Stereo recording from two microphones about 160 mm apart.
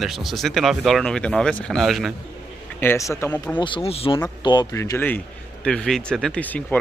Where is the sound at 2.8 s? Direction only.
15° left (ahead or behind).